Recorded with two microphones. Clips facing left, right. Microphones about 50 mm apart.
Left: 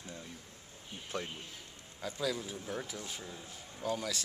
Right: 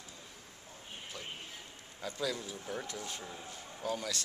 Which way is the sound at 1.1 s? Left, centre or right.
Left.